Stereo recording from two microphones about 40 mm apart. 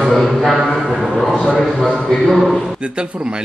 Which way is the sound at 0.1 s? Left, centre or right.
Centre.